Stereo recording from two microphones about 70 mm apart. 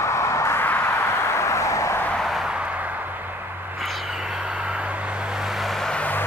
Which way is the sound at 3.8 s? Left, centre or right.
Centre.